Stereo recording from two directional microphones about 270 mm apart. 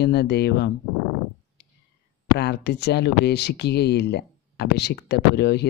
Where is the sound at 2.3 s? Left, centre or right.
Left.